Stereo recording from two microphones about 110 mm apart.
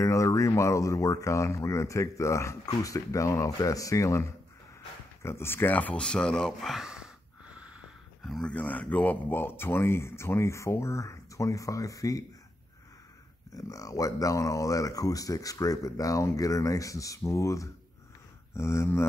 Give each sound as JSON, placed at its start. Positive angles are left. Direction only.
{"t": 0.0, "sound": "speech", "side_deg": 30}
{"t": 5.2, "sound": "a sound", "side_deg": 25}
{"t": 8.5, "sound": "speech", "side_deg": 15}
{"t": 13.6, "sound": "speech", "side_deg": 30}